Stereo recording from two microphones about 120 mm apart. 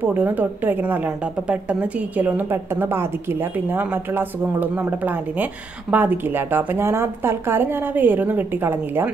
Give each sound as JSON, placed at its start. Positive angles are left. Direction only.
{"t": 0.0, "sound": "a woman's voice", "side_deg": -15}